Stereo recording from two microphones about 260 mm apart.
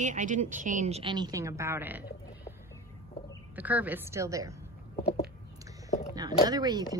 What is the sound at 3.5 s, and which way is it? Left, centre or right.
A woman's voice, centre.